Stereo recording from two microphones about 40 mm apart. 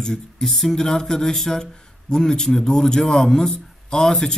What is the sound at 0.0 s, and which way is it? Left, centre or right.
Speech, centre.